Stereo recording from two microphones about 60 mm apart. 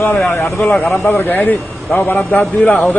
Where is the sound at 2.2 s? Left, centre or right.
Left.